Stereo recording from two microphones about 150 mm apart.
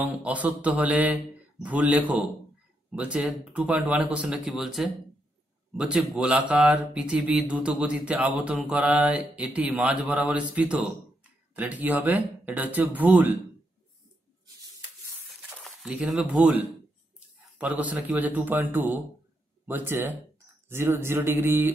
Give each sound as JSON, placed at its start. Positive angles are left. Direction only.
{"t": 0.0, "sound": "speech", "side_deg": -10}
{"t": 15.6, "sound": "speech", "side_deg": -5}
{"t": 17.6, "sound": "speech", "side_deg": -10}